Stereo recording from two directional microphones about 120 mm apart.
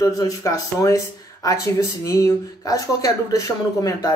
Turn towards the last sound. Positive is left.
turn(degrees=30)  # may be behind; listen again after turning